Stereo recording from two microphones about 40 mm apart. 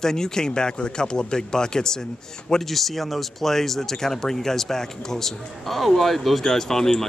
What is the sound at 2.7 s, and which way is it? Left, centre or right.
Speech, centre.